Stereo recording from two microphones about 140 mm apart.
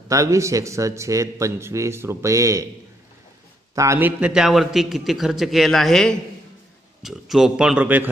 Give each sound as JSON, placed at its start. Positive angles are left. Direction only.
{"t": 0.1, "sound": "a man's voice", "side_deg": -20}
{"t": 3.7, "sound": "a man's voice", "side_deg": -20}
{"t": 4.2, "sound": "a man's voice", "side_deg": -5}